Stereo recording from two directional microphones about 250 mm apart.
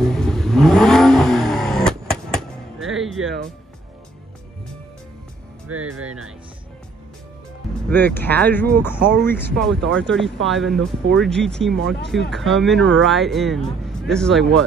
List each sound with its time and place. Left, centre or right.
0.0 s vehicle: centre
5.7 s music: right
7.9 s speech: centre
9.0 s speech: right
9.3 s speech: centre